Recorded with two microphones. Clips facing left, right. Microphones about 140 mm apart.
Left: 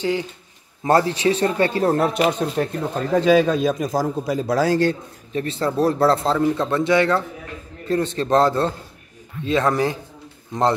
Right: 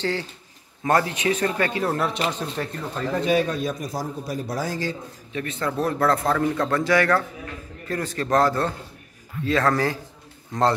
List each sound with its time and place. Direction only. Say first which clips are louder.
0.0 s a man's voice: left 4 dB; 15° left (ahead or behind)
0.8 s speech: left 4 dB; 30° left (ahead or behind)
3.3 s a man's voice: left 7 dB; 90° left; by 4.9 s 70° left (ahead or behind)
5.3 s a man's voice: left 5 dB; 30° left (ahead or behind)